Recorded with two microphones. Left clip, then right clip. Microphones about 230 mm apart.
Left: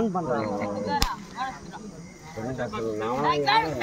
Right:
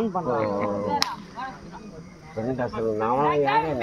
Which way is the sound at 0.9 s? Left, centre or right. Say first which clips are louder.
Right 1 dB; centre.